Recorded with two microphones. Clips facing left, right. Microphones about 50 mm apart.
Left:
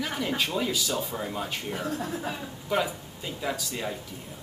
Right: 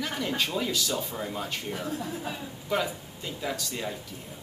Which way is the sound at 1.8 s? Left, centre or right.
Left.